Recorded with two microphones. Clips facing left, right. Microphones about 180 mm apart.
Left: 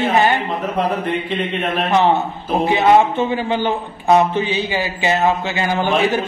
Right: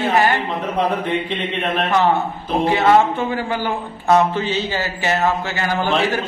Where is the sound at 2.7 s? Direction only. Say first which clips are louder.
Left 1 dB; 20° left (ahead or behind).